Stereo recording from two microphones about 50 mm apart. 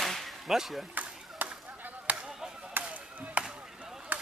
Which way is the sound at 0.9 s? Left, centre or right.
Right.